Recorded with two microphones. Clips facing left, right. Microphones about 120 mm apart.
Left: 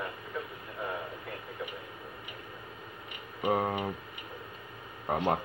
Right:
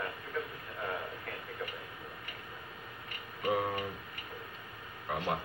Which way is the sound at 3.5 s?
40° left (ahead or behind).